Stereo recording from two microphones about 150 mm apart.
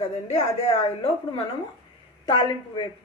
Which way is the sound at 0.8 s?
40° left (ahead or behind).